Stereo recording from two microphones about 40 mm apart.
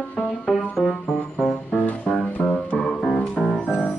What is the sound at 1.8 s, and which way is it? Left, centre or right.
Music, left.